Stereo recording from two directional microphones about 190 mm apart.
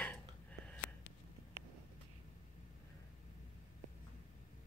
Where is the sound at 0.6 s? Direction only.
5° left (ahead or behind).